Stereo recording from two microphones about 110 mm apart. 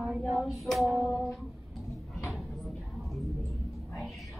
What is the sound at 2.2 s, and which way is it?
Music, centre (ahead or behind).